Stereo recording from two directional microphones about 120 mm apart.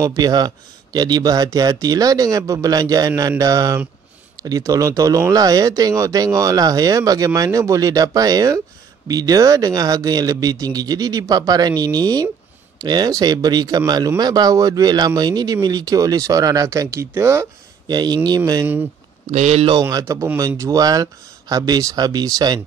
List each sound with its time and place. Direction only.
0.0 s speech: 30° right (ahead or behind)
17.8 s speech: 35° right (ahead or behind)
19.3 s speech: 70° right (ahead or behind)
19.8 s speech: 30° right (ahead or behind)